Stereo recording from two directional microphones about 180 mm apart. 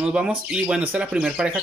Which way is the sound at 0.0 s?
5° right (ahead or behind).